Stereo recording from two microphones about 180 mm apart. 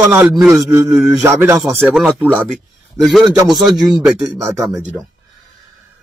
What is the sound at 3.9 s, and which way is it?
Speech, centre (ahead or behind).